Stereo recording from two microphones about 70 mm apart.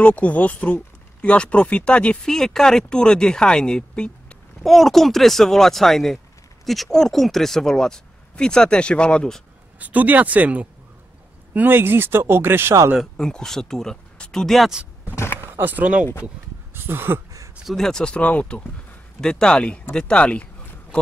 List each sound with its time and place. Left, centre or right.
0.0 s speech: left
4.6 s speech: centre
9.8 s speech: right
13.0 s speech: centre
15.5 s speech: right
16.7 s speech: right
17.6 s speech: centre